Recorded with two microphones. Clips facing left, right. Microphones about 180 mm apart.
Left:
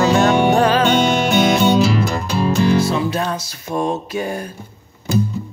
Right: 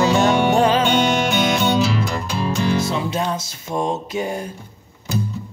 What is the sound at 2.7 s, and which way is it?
Music, 20° right (ahead or behind).